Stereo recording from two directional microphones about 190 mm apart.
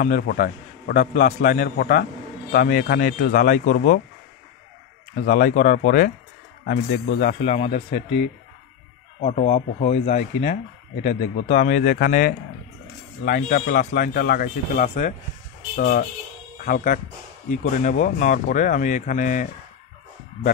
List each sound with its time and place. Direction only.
0.0 s a man's voice: 45° left (ahead or behind)
5.2 s a man's voice: 45° left (ahead or behind)
7.1 s a man's voice: 40° left (ahead or behind)
9.2 s a man's voice: 35° left (ahead or behind)